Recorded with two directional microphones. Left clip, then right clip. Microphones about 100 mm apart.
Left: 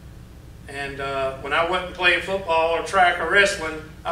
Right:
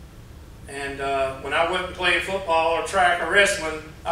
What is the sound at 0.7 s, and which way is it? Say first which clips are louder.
A man's voice: right 1 dB; 35° left (ahead or behind).